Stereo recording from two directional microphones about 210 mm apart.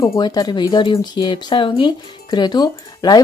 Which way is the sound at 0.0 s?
15° left (ahead or behind).